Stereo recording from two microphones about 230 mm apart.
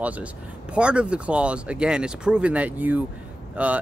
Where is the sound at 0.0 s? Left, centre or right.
Centre.